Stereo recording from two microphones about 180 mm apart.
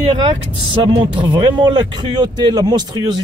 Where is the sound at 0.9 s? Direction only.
25° right (ahead or behind).